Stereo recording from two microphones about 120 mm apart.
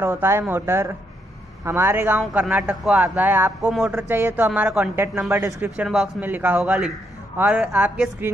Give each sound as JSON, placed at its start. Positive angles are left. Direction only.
{"t": 0.0, "sound": "speech", "side_deg": -20}